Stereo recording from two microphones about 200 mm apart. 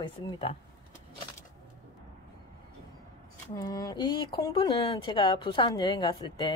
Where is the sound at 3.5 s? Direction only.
20° left (ahead or behind).